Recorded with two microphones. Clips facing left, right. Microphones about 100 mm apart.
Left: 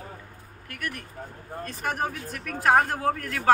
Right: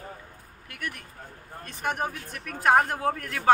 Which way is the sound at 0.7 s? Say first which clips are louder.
Left 2 dB; 20° right (ahead or behind).